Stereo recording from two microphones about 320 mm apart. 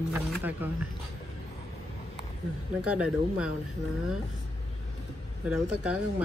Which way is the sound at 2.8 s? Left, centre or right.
Centre.